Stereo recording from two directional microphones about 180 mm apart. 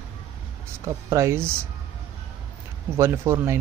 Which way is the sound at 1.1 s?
15° right (ahead or behind).